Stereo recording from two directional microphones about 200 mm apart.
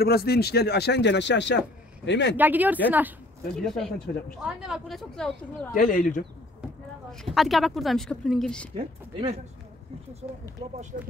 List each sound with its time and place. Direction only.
0.0 s speech: 50° left (ahead or behind)
2.3 s speech: 10° right (ahead or behind)
5.8 s speech: 40° left (ahead or behind)
7.1 s speech: centre (ahead or behind)
8.7 s speech: 30° right (ahead or behind)
10.6 s speech: 25° right (ahead or behind)